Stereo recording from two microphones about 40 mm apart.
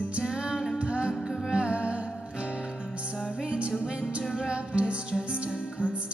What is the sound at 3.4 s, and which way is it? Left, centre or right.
Music, right.